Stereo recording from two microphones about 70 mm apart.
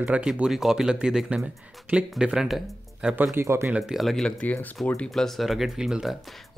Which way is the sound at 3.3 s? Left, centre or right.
Right.